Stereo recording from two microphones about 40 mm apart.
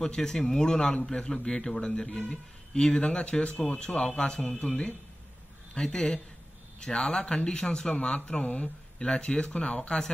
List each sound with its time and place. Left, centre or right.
0.0 s a man's voice: centre
5.8 s a man's voice: centre
8.0 s speech: left